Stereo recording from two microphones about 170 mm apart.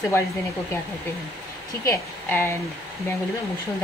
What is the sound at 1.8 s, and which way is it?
Speech, 15° left (ahead or behind).